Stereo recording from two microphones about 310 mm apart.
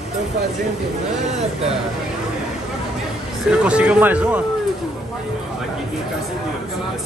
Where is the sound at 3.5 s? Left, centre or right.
Centre.